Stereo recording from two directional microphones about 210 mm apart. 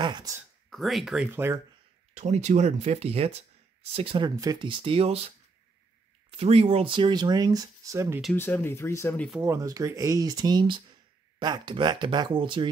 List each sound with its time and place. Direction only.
0.0 s speech: 20° right (ahead or behind)
0.7 s speech: centre (ahead or behind)
2.1 s speech: 35° right (ahead or behind)
6.3 s speech: 30° right (ahead or behind)
8.2 s speech: 5° left (ahead or behind)
9.4 s speech: 15° right (ahead or behind)